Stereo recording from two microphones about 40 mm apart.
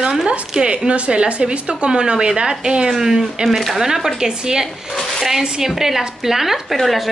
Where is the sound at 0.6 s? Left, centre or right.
Right.